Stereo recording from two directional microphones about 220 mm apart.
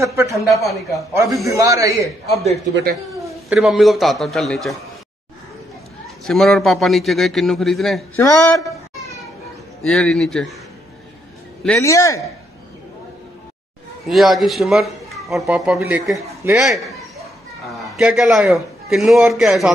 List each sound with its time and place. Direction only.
0.0 s a man's voice: 15° right (ahead or behind)
2.7 s speech: 45° right (ahead or behind)
3.4 s speech: centre (ahead or behind)
6.2 s speech: centre (ahead or behind)
8.2 s a man's voice: 15° left (ahead or behind)
9.8 s speech: 5° left (ahead or behind)
11.6 s a man's voice: 10° left (ahead or behind)
14.0 s speech: centre (ahead or behind)